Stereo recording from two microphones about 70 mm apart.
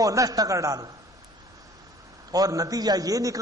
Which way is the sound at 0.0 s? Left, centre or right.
Right.